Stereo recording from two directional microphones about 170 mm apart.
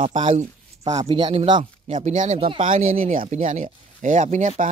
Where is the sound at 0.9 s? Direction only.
25° right (ahead or behind).